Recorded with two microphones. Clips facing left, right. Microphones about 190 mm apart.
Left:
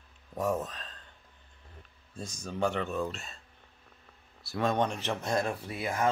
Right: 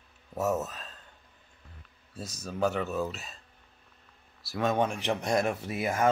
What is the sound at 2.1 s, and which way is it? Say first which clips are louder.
Speech: right 1 dB; 5° right (ahead or behind).